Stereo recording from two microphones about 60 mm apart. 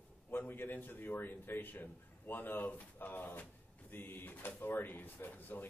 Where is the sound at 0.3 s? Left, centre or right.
Left.